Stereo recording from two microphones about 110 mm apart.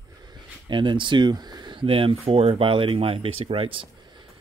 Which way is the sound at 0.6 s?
45° right (ahead or behind).